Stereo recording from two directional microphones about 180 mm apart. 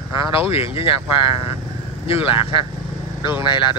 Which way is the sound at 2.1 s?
30° left (ahead or behind).